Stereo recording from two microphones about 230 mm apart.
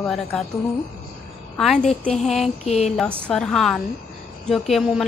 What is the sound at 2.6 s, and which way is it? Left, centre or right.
Speech, left.